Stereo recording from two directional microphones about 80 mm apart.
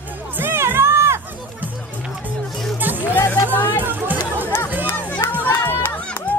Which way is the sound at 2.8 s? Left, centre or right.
Right.